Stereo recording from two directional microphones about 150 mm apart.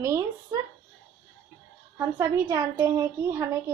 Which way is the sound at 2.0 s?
20° right (ahead or behind).